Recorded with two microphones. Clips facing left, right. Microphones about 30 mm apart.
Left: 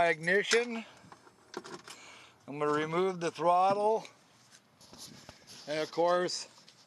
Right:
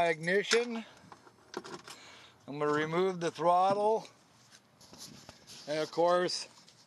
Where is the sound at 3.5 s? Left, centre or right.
Centre.